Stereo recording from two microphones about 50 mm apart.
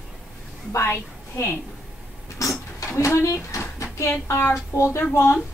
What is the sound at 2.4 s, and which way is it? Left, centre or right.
Speech, left.